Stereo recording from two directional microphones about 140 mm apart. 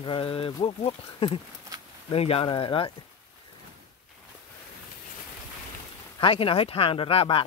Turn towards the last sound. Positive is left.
turn(degrees=40)  # may be behind; listen again after turning